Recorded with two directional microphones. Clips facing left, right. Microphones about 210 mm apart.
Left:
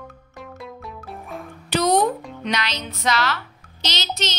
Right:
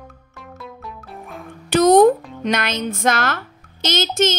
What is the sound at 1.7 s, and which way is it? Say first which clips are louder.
Speech: right 8 dB; 50° right (ahead or behind).